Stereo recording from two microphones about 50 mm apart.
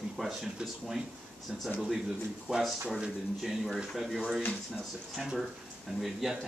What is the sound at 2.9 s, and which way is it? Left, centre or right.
Speech, centre.